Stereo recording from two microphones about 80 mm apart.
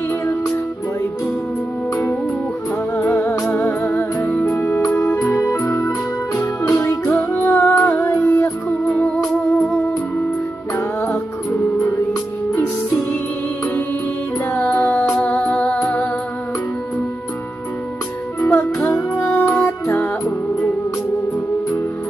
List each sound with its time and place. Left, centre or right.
3.1 s music: left
4.6 s organ: centre
5.2 s organ: left
6.4 s music: left
6.9 s music: left
8.8 s music: centre
10.8 s music: left
14.5 s music: left
18.4 s music: left